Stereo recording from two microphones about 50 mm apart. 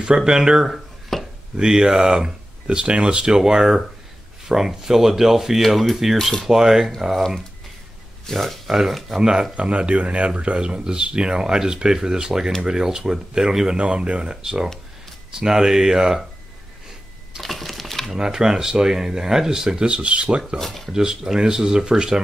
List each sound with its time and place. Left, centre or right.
0.0 s speech: centre
1.1 s chopping: centre
1.6 s speech: centre
8.3 s speech: centre
17.4 s sewing machine: centre
18.1 s speech: centre
20.5 s speech: centre
20.9 s speech: centre